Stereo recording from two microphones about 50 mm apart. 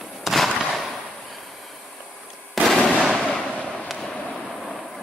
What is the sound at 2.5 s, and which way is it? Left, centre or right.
Fireworks, centre.